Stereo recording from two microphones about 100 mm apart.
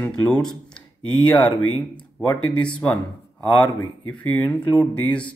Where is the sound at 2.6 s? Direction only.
10° left (ahead or behind).